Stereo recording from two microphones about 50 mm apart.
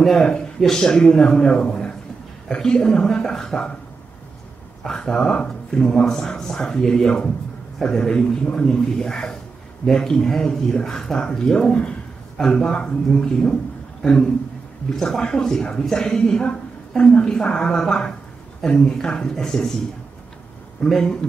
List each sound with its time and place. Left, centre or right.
0.0 s speech: centre
4.8 s speech: centre
20.8 s speech: centre